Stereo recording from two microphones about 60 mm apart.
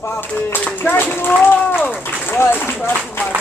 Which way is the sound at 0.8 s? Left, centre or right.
Left.